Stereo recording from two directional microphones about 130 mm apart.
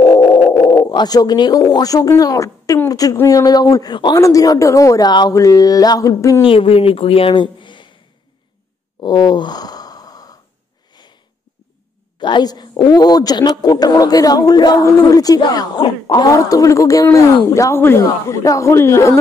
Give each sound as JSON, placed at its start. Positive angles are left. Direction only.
{"t": 0.0, "sound": "speech", "side_deg": 35}
{"t": 6.4, "sound": "speech", "side_deg": 45}
{"t": 9.0, "sound": "sigh", "side_deg": 35}
{"t": 10.9, "sound": "sniff", "side_deg": 35}
{"t": 12.2, "sound": "a woman's voice", "side_deg": 35}